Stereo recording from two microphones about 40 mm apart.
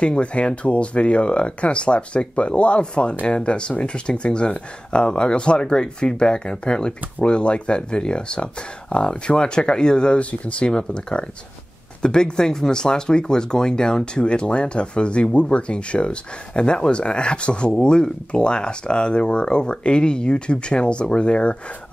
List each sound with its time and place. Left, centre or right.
0.0 s speech: left